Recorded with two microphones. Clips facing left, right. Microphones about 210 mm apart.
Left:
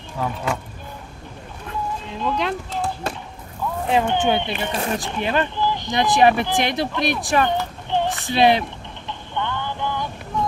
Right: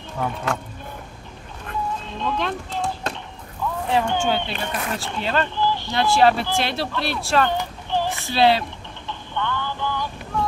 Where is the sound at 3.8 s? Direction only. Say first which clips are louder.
Left 2 dB; 20° left (ahead or behind).